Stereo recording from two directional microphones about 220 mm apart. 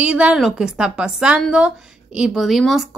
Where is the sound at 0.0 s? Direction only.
5° right (ahead or behind).